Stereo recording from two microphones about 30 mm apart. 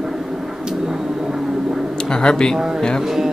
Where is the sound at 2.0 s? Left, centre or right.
Left.